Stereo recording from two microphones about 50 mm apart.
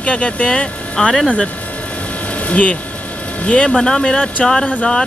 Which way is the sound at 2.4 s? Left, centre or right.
Left.